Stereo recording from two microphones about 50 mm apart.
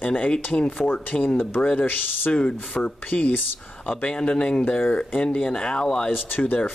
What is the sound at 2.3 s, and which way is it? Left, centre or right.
Speech, centre.